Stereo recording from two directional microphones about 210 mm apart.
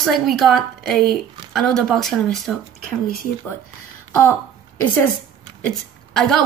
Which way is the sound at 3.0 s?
45° left (ahead or behind).